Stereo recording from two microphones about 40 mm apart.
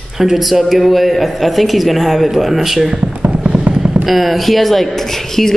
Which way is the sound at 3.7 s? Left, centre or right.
Right.